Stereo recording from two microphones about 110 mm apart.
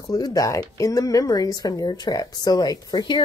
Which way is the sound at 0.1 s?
30° left (ahead or behind).